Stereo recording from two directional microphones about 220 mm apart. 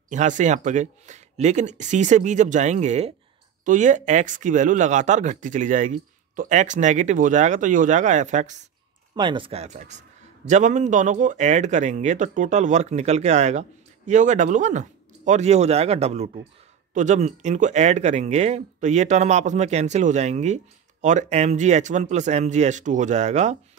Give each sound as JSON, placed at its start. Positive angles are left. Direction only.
{"t": 0.1, "sound": "speech", "side_deg": -35}
{"t": 9.1, "sound": "speech", "side_deg": -20}